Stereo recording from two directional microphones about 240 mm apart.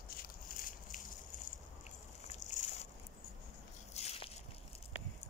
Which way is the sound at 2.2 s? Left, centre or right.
Left.